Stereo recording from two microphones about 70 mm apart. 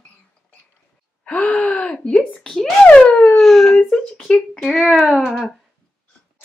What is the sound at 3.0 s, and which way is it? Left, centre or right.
Speech, centre.